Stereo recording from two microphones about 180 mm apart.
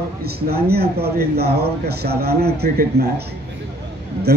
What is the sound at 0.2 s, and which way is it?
Speech, 60° right (ahead or behind).